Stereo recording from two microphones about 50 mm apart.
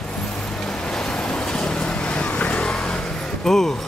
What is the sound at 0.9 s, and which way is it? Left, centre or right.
Vehicle, centre.